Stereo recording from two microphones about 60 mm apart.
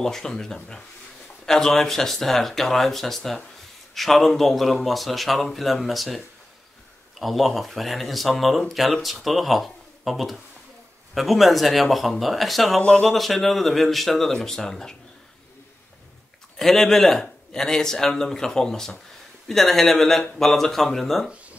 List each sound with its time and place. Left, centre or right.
0.0 s speech: centre
12.8 s speech: centre
13.1 s speech: centre
16.5 s speech: centre